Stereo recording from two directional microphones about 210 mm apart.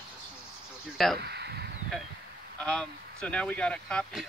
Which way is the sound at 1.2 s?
50° right (ahead or behind).